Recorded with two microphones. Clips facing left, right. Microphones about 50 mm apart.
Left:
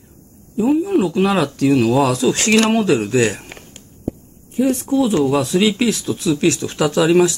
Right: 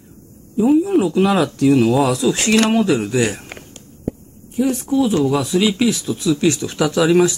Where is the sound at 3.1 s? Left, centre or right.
Left.